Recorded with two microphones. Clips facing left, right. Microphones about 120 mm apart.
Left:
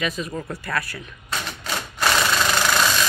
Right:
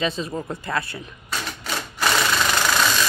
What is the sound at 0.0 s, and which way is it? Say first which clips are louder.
Speech: right 2 dB; 30° right (ahead or behind).